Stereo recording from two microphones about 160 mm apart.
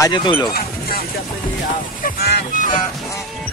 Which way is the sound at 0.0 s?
30° left (ahead or behind).